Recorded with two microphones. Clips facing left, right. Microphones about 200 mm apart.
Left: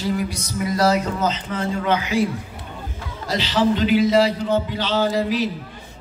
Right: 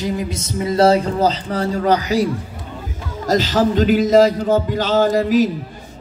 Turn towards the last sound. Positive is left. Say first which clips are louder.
# right 6 dB
turn(degrees=-45)  # may be behind; listen again after turning